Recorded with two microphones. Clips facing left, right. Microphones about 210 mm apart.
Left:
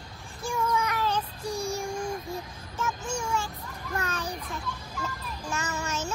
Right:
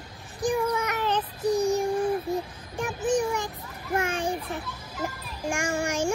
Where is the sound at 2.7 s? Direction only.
15° right (ahead or behind).